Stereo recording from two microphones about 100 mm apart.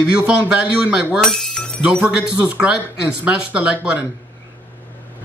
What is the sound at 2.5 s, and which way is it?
A man's voice, 10° right (ahead or behind).